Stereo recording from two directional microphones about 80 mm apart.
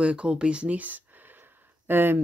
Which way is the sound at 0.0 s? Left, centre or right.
Centre.